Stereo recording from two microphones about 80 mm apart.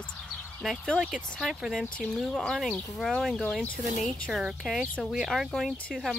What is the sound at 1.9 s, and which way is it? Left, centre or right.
Speech, centre.